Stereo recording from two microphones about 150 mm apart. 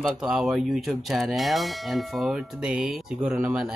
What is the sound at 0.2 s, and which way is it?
Bell, 5° right (ahead or behind).